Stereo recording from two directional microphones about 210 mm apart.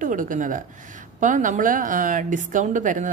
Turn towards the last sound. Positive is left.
turn(degrees=-40)  # may be behind; listen again after turning